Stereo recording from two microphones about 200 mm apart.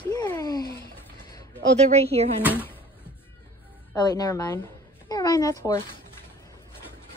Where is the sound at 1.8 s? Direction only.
30° right (ahead or behind).